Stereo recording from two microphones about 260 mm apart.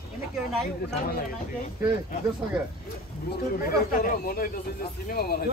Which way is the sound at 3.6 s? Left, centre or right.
Left.